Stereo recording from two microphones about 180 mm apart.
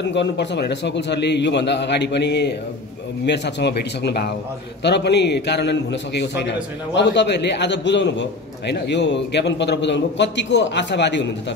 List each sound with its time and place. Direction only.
0.0 s a man's voice: 75° left (ahead or behind)